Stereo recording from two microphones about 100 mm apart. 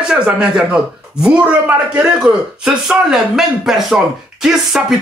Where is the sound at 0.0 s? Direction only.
5° right (ahead or behind).